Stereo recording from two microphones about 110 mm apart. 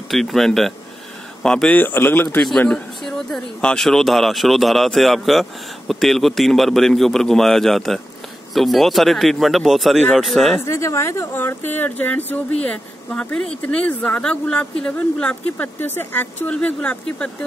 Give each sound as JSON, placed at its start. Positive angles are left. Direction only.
{"t": 0.1, "sound": "speech", "side_deg": 0}
{"t": 1.8, "sound": "speech", "side_deg": 20}
{"t": 2.7, "sound": "speech", "side_deg": 5}
{"t": 10.6, "sound": "speech", "side_deg": 25}